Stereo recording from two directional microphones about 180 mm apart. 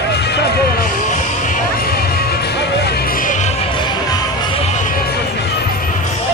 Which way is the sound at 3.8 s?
25° left (ahead or behind).